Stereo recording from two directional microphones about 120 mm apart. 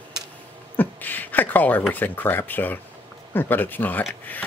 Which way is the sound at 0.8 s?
15° left (ahead or behind).